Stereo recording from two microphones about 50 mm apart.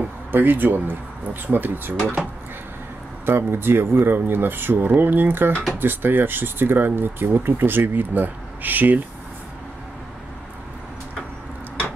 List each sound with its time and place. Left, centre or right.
0.3 s speech: right
3.3 s speech: right